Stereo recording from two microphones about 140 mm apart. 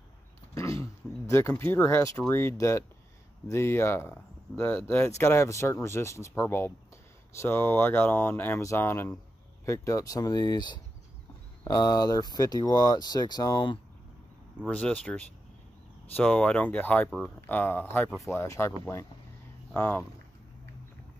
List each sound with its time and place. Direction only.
0.6 s speech: 20° left (ahead or behind)
14.7 s speech: 10° left (ahead or behind)